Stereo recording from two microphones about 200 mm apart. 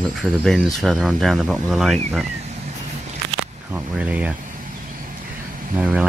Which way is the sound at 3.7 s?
5° right (ahead or behind).